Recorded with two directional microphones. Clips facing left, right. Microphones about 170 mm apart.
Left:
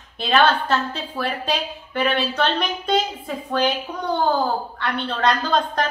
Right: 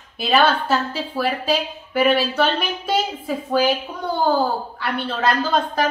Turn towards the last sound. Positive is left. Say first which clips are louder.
# right 1 dB
turn(degrees=-5)  # may be behind; listen again after turning